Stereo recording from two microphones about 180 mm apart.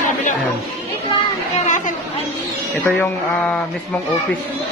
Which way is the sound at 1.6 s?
45° left (ahead or behind).